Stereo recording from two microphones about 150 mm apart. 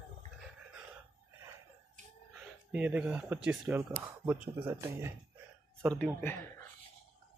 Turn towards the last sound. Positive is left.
turn(degrees=10)  # may be behind; listen again after turning